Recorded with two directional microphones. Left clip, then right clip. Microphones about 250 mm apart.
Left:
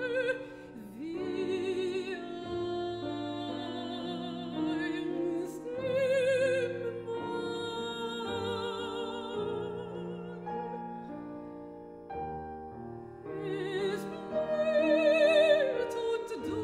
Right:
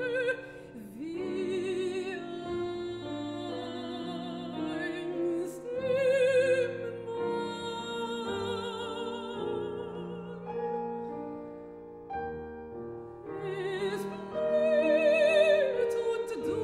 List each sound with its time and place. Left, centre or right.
0.0 s music: centre
13.4 s music: centre